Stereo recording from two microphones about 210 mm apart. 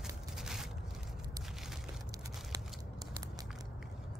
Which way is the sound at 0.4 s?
Centre (ahead or behind).